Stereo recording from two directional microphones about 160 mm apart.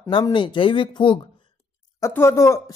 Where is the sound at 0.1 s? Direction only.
30° left (ahead or behind).